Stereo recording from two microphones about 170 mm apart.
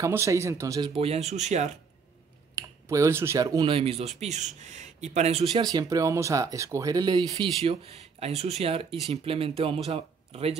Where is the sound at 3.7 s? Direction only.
35° right (ahead or behind).